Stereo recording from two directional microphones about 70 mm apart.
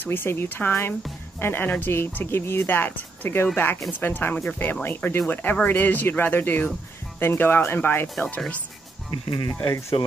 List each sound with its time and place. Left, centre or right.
0.0 s speech: left
9.1 s speech: left
9.7 s speech: left